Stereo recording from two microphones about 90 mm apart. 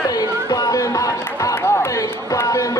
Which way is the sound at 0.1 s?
45° left (ahead or behind).